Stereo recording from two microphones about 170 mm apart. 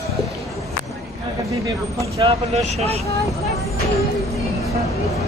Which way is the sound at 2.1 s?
35° right (ahead or behind).